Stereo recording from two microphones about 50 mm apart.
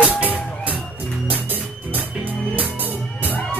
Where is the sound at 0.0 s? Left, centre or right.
Right.